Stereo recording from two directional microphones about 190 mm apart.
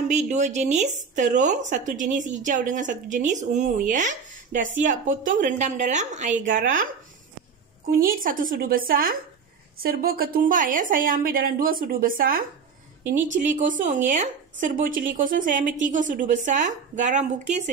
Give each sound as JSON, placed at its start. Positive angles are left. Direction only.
{"t": 0.1, "sound": "a woman's voice", "side_deg": -40}
{"t": 8.0, "sound": "a woman's voice", "side_deg": -45}